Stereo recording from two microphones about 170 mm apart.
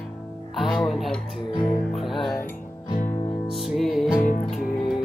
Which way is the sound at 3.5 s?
Centre (ahead or behind).